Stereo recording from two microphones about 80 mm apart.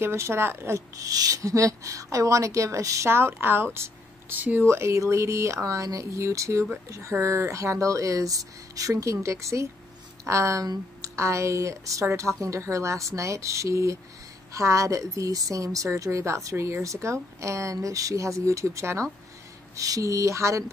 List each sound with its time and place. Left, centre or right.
0.0 s a woman's voice: right
0.7 s a woman's voice: right
4.4 s speech: right
4.6 s a woman's voice: right